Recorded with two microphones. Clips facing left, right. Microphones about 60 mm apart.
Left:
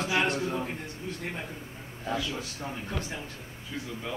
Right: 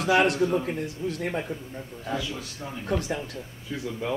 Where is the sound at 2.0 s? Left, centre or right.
Centre.